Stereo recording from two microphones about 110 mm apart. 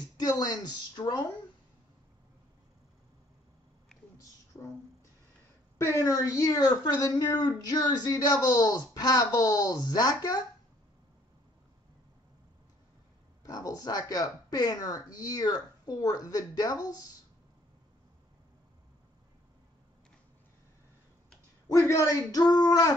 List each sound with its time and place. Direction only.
0.2 s speech: 35° left (ahead or behind)
4.5 s music: 15° left (ahead or behind)
5.8 s speech: 25° left (ahead or behind)
13.4 s speech: 35° left (ahead or behind)
21.6 s speech: 25° left (ahead or behind)